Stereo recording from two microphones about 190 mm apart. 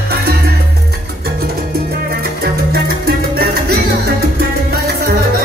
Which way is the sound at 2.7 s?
55° right (ahead or behind).